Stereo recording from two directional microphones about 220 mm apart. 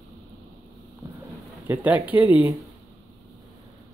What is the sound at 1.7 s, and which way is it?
Speech, 5° right (ahead or behind).